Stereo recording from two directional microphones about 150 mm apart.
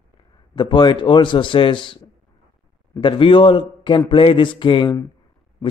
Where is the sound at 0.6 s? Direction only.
30° left (ahead or behind).